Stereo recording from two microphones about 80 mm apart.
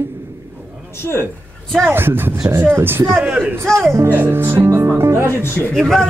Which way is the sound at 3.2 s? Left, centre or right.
Centre.